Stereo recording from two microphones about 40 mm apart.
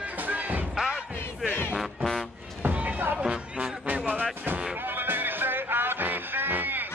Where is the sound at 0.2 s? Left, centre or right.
Right.